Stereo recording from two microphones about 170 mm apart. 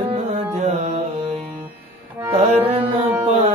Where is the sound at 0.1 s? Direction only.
40° right (ahead or behind).